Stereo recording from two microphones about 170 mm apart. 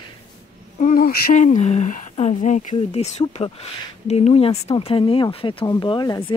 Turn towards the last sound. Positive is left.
turn(degrees=25)  # may be behind; listen again after turning